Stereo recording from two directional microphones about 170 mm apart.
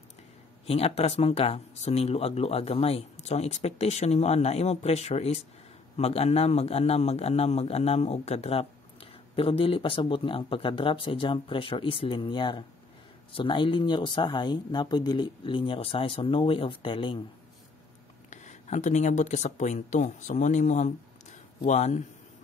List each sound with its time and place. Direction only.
0.7 s speech: 35° left (ahead or behind)
18.3 s speech: 45° left (ahead or behind)